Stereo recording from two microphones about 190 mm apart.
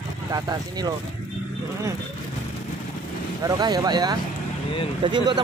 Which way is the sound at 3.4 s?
20° right (ahead or behind).